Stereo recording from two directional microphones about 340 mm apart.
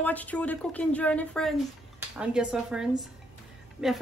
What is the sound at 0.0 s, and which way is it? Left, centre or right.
Speech, centre.